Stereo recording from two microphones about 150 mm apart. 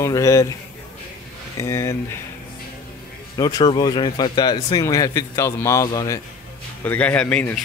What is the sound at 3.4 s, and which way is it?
Speech, 30° left (ahead or behind).